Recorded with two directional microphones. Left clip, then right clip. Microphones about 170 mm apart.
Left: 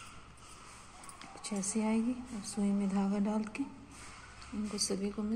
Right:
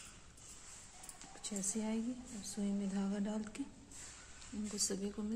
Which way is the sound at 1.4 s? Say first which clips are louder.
Left 6 dB; 10° right (ahead or behind).